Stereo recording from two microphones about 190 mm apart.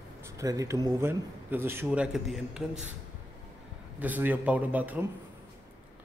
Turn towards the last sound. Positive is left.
turn(degrees=-10)  # may be behind; listen again after turning